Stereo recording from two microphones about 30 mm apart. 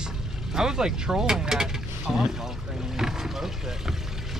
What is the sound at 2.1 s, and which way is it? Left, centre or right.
Boat, centre.